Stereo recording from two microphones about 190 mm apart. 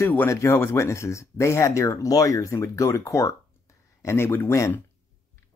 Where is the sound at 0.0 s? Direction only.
10° left (ahead or behind).